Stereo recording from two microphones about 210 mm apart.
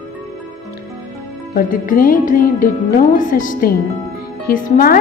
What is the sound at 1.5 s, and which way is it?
A woman's voice, 40° left (ahead or behind).